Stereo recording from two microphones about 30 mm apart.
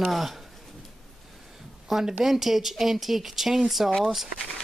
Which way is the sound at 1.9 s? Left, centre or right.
Centre.